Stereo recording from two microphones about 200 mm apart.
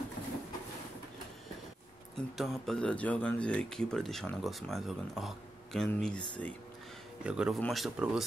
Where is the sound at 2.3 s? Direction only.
Centre (ahead or behind).